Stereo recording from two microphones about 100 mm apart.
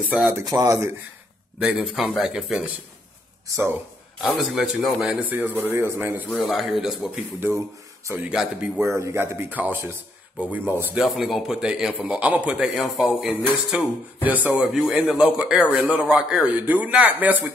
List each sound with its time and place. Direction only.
0.5 s speech: 35° right (ahead or behind)
1.6 s a man's voice: 10° right (ahead or behind)
3.5 s speech: 35° right (ahead or behind)
4.2 s speech: 5° right (ahead or behind)
5.0 s speech: 15° right (ahead or behind)
6.3 s speech: centre (ahead or behind)
7.3 s speech: 25° right (ahead or behind)
11.0 s a man's voice: centre (ahead or behind)